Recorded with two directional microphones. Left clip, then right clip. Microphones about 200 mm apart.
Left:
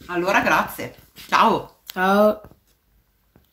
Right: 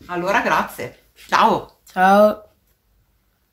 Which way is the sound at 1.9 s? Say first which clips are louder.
Right 4 dB; 35° right (ahead or behind).